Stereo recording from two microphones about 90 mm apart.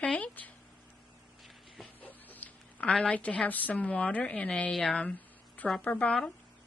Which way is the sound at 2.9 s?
10° left (ahead or behind).